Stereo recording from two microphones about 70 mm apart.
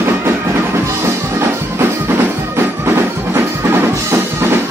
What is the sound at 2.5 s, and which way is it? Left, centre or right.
Music, right.